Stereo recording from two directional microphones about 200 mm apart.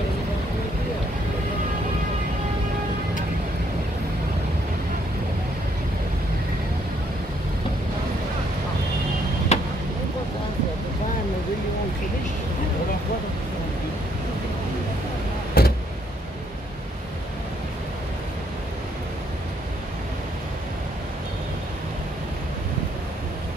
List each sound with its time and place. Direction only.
9.5 s vehicle: 35° left (ahead or behind)
15.6 s vehicle: 50° left (ahead or behind)